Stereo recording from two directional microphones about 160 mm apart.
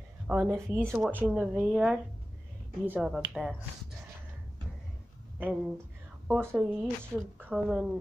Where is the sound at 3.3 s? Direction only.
Centre (ahead or behind).